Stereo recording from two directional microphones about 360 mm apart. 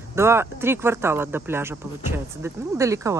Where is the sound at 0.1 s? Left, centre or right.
Centre.